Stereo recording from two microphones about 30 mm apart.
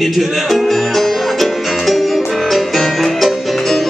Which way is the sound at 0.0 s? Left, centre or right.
Centre.